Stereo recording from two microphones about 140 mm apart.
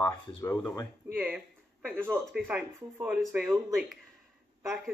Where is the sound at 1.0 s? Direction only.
10° right (ahead or behind).